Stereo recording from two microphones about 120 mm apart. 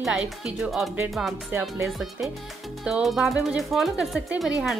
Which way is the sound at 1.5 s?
20° right (ahead or behind).